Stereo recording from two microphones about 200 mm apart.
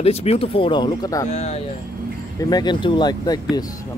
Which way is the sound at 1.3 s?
35° left (ahead or behind).